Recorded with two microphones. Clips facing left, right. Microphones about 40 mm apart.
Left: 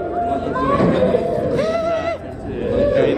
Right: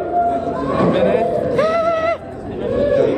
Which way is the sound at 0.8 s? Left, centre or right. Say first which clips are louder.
Right 4 dB; right.